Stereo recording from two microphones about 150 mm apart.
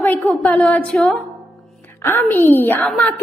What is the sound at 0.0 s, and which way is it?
A woman's voice, 15° left (ahead or behind).